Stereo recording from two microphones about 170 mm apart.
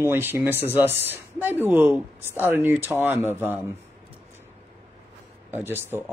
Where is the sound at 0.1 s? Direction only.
15° right (ahead or behind).